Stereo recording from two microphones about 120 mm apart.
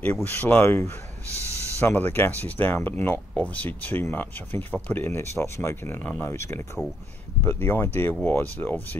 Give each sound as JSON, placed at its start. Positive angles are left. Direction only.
{"t": 0.0, "sound": "speech", "side_deg": 15}